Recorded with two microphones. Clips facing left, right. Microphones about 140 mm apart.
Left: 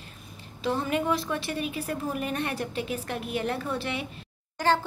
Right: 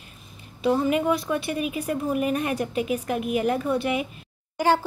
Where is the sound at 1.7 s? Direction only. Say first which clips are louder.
Right 5 dB; 10° right (ahead or behind).